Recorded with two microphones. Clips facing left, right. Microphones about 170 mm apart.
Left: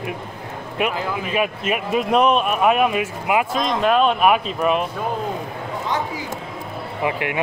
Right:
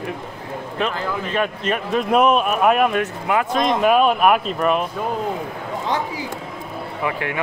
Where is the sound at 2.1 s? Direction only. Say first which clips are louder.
Right 1 dB; 5° right (ahead or behind).